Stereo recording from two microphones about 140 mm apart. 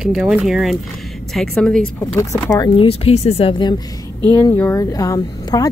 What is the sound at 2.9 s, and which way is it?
Speech, 45° left (ahead or behind).